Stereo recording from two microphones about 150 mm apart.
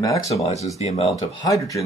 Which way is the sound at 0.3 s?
45° left (ahead or behind).